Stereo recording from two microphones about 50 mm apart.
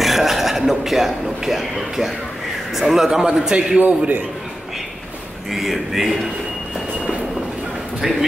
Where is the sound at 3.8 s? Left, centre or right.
Right.